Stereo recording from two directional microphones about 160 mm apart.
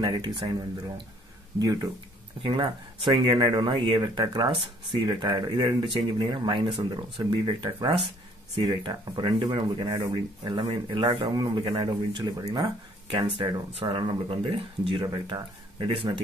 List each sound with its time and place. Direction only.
0.0 s speech: 30° right (ahead or behind)